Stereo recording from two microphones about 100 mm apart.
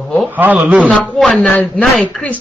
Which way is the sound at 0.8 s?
10° left (ahead or behind).